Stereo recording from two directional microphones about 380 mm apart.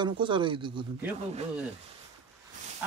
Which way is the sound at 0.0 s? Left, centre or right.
Centre.